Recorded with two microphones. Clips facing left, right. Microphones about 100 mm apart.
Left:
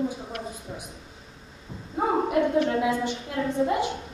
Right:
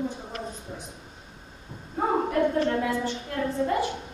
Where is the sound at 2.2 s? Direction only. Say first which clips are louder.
Left 1 dB; 15° left (ahead or behind).